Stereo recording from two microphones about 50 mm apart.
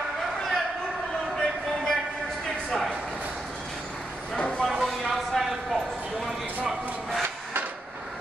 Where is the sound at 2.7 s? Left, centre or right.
Centre.